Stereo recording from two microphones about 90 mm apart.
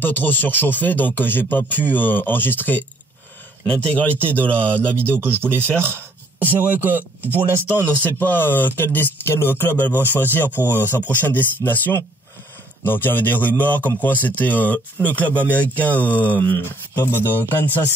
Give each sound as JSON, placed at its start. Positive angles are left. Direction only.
{"t": 0.0, "sound": "speech", "side_deg": 20}
{"t": 4.1, "sound": "speech", "side_deg": -25}
{"t": 4.4, "sound": "speech", "side_deg": 15}
{"t": 4.9, "sound": "speech", "side_deg": -25}
{"t": 8.2, "sound": "speech", "side_deg": 20}
{"t": 10.8, "sound": "speech", "side_deg": -20}
{"t": 11.1, "sound": "speech", "side_deg": 20}